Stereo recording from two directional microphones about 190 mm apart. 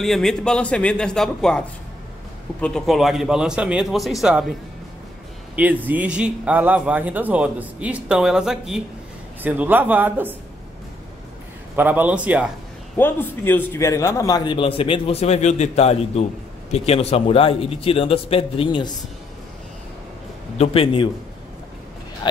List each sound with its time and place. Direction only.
0.0 s a man's voice: centre (ahead or behind)
2.6 s a man's voice: centre (ahead or behind)
5.6 s speech: 10° right (ahead or behind)
11.7 s speech: 10° right (ahead or behind)
12.9 s a man's voice: 10° left (ahead or behind)
20.5 s a man's voice: 30° left (ahead or behind)
22.2 s speech: 25° left (ahead or behind)